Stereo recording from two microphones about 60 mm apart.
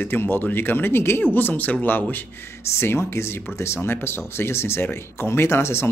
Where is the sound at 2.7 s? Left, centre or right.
Left.